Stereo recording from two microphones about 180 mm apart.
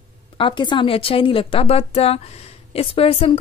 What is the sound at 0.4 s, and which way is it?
A woman's voice, 25° left (ahead or behind).